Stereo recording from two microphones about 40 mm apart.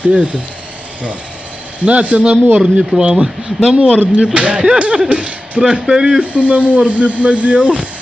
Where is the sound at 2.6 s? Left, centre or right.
Centre.